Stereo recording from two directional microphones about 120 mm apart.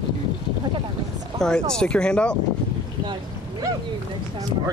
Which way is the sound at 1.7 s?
5° left (ahead or behind).